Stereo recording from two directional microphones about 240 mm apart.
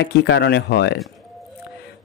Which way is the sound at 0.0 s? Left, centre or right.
Left.